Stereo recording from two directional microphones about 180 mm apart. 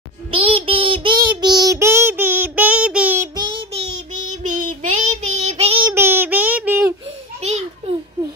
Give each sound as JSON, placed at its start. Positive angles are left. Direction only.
{"t": 0.3, "sound": "child singing", "side_deg": -30}
{"t": 3.3, "sound": "child singing", "side_deg": -25}
{"t": 3.9, "sound": "child singing", "side_deg": -45}
{"t": 5.9, "sound": "child singing", "side_deg": -10}
{"t": 7.3, "sound": "a sound", "side_deg": -35}